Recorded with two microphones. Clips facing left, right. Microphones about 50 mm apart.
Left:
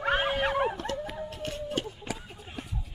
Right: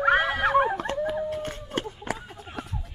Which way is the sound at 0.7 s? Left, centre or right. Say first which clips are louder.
Right 6 dB; right.